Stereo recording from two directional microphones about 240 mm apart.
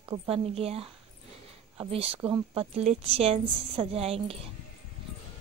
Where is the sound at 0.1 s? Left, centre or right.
Right.